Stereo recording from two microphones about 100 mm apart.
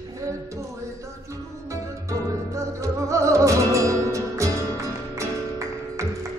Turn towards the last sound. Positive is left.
turn(degrees=-30)  # may be behind; listen again after turning